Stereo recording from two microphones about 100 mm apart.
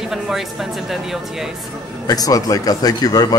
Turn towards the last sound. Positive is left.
turn(degrees=40)  # may be behind; listen again after turning